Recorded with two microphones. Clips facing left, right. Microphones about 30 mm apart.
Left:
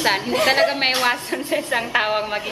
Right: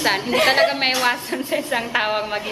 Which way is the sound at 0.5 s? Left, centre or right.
Centre.